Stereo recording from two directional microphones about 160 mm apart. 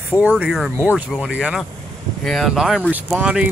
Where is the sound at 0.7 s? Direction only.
10° right (ahead or behind).